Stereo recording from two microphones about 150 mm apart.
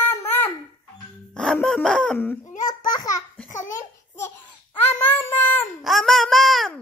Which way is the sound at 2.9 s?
25° left (ahead or behind).